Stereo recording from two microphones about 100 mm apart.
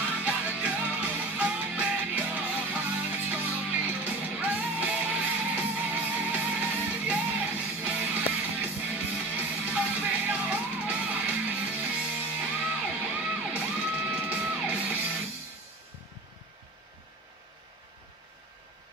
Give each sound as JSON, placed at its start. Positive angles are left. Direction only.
{"t": 0.0, "sound": "music", "side_deg": -20}